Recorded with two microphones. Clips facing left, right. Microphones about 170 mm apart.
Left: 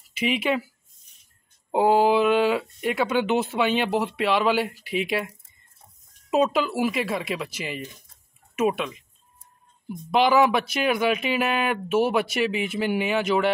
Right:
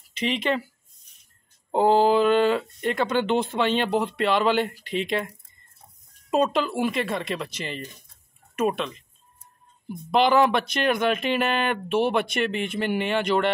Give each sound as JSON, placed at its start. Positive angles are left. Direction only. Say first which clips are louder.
{"t": 0.1, "sound": "speech", "louder": "left 1 dB", "side_deg": 5}
{"t": 1.7, "sound": "speech", "louder": "even", "side_deg": 5}
{"t": 6.3, "sound": "speech", "louder": "left 1 dB", "side_deg": 5}